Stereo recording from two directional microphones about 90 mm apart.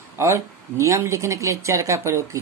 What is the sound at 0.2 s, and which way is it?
A woman's voice, 35° right (ahead or behind).